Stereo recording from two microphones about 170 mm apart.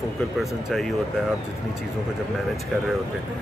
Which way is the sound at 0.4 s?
Centre (ahead or behind).